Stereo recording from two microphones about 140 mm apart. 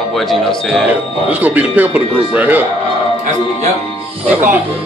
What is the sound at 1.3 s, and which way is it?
Speech, 10° right (ahead or behind).